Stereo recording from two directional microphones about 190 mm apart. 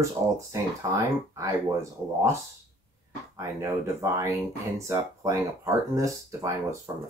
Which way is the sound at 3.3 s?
15° right (ahead or behind).